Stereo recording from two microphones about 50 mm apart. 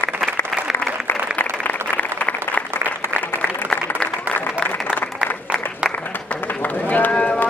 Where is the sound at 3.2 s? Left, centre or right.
Left.